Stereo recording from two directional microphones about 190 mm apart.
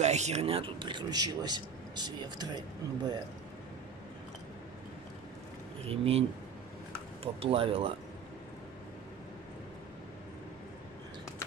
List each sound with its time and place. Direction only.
0.0 s speech: 35° right (ahead or behind); by 3.2 s 20° right (ahead or behind)
5.9 s speech: 30° right (ahead or behind)
7.4 s speech: 30° right (ahead or behind)